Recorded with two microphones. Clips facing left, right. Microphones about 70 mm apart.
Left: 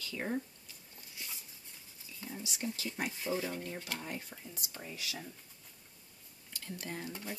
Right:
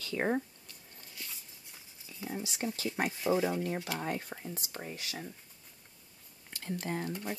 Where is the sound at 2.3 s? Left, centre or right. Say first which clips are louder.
Right 5 dB; right.